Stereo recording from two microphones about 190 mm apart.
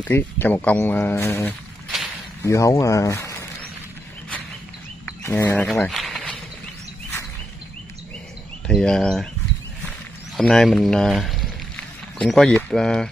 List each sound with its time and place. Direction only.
0.0 s speech: 10° left (ahead or behind)
5.2 s speech: 10° left (ahead or behind)
8.6 s speech: 5° left (ahead or behind)
10.3 s speech: centre (ahead or behind)